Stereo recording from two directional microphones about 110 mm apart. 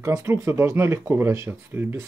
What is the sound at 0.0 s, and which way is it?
Speech, 25° right (ahead or behind).